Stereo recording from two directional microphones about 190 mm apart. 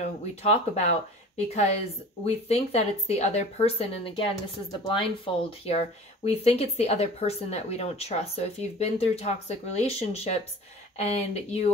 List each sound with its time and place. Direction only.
0.4 s speech: 35° left (ahead or behind)